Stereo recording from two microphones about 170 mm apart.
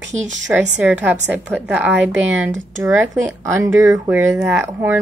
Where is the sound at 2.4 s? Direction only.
10° right (ahead or behind).